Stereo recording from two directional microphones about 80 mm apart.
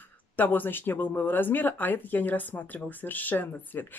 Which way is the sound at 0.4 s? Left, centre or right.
Left.